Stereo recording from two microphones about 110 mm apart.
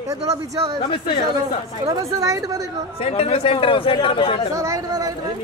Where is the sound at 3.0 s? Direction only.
60° left (ahead or behind).